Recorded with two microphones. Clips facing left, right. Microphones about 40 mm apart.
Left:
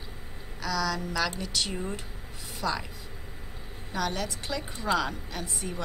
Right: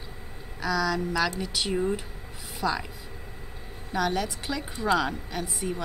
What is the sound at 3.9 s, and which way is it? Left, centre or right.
A woman's voice, centre.